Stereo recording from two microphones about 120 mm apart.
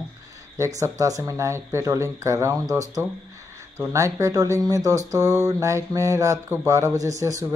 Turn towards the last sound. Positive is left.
turn(degrees=-25)  # may be behind; listen again after turning